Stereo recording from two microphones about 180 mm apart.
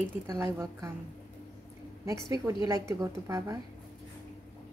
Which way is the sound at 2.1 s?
20° right (ahead or behind).